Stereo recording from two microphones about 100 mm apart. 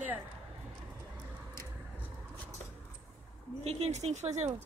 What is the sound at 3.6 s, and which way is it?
Speech, 90° right.